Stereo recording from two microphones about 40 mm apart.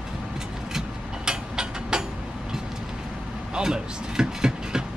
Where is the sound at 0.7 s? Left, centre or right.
Centre.